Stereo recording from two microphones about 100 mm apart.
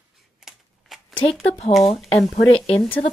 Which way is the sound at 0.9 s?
5° right (ahead or behind).